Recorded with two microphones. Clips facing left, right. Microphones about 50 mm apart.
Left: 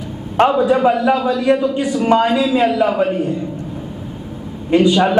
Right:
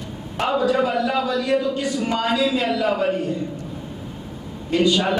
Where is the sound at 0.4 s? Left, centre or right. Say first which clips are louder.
Left 10 dB; left.